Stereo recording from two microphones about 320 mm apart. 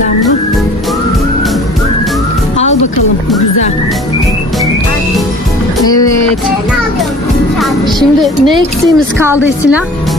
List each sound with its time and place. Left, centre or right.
5.9 s music: centre
8.9 s a woman's voice: centre